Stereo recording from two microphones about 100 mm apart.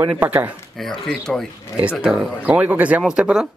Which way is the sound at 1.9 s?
15° right (ahead or behind).